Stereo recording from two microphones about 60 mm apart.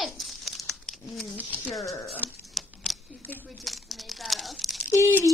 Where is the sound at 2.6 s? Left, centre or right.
Centre.